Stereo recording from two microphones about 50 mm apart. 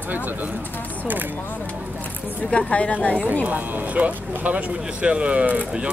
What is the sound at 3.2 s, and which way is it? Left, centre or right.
Speech, right.